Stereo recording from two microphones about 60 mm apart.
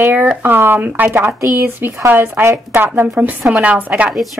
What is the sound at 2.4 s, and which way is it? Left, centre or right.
Speech, right.